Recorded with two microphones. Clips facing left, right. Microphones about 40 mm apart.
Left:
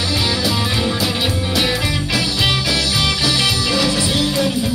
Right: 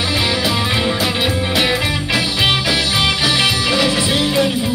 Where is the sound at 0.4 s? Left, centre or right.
Right.